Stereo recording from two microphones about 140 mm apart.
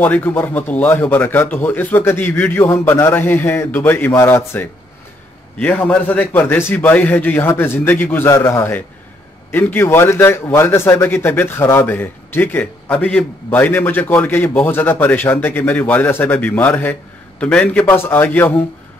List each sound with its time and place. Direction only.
0.0 s a man's voice: 15° left (ahead or behind)